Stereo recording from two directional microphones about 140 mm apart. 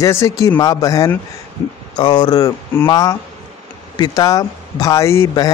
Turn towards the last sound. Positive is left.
turn(degrees=20)  # may be behind; listen again after turning